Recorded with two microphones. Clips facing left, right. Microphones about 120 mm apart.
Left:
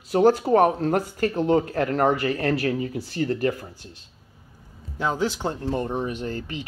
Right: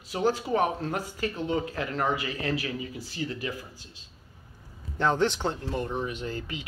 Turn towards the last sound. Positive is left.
turn(degrees=40)  # may be behind; listen again after turning